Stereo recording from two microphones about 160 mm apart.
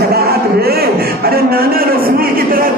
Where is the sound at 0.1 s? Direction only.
75° right (ahead or behind).